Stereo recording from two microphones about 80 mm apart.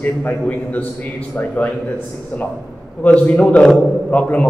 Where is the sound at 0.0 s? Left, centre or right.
Centre.